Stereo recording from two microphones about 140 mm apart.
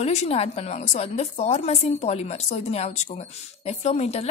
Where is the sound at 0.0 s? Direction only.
50° left (ahead or behind).